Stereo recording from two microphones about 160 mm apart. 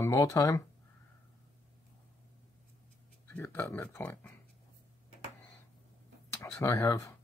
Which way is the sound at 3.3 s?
10° left (ahead or behind).